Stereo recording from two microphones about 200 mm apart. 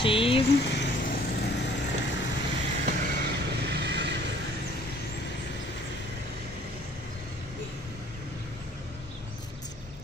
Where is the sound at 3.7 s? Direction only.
60° right (ahead or behind).